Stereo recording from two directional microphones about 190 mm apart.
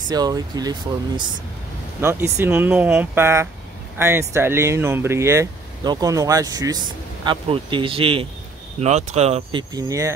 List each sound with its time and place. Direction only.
0.1 s speech: 20° right (ahead or behind)